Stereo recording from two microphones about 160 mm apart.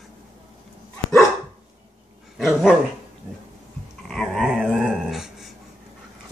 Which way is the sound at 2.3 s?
Centre (ahead or behind).